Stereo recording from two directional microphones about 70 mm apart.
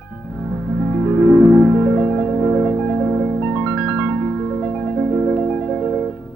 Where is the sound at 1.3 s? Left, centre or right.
Centre.